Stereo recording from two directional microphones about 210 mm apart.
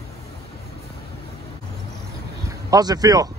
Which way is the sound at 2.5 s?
15° right (ahead or behind).